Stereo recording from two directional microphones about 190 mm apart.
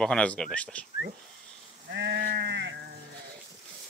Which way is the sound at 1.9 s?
65° right (ahead or behind).